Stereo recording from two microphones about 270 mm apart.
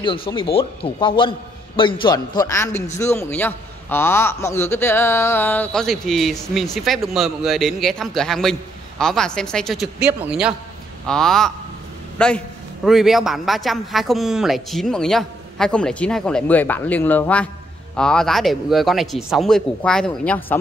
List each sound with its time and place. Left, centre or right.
0.0 s a man's voice: centre